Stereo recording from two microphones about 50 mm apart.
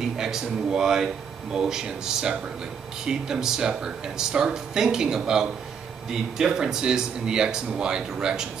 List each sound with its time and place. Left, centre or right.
0.2 s speech: centre